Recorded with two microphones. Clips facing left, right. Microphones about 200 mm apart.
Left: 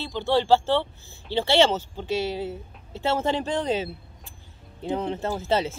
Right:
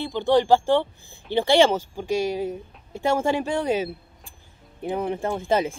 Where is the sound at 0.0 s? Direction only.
15° right (ahead or behind).